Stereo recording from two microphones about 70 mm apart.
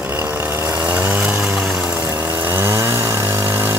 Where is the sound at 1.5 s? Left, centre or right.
Right.